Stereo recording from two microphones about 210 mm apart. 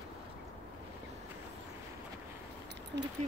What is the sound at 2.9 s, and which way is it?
Speech, 55° right (ahead or behind).